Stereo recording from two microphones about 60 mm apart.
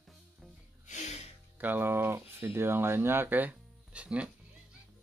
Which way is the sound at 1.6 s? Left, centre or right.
Right.